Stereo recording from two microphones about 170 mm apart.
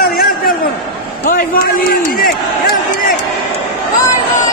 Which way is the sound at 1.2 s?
60° left (ahead or behind).